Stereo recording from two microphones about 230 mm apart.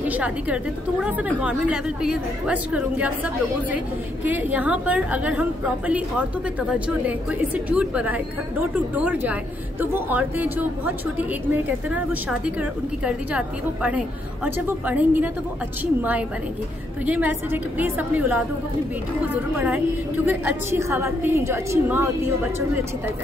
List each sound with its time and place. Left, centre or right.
0.1 s a woman's voice: centre